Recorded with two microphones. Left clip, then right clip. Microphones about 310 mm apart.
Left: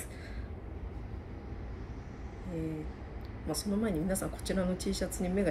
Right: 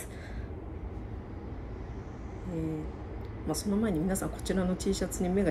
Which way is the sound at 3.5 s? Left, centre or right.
Centre.